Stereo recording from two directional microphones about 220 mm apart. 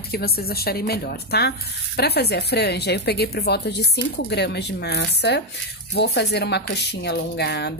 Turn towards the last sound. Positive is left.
turn(degrees=50)  # may be behind; listen again after turning